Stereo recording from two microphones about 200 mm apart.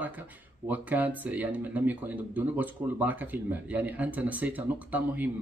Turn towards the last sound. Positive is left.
turn(degrees=-10)  # may be behind; listen again after turning